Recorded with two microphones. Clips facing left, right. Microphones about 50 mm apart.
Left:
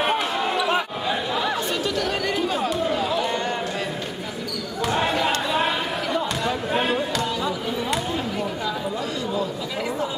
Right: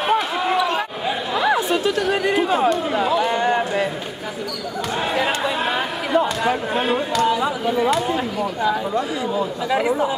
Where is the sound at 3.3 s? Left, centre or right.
Right.